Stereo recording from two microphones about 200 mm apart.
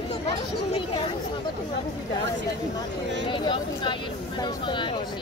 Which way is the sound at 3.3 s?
25° left (ahead or behind).